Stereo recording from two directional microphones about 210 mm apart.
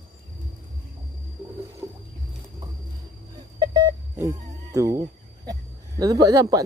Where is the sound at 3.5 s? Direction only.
15° right (ahead or behind).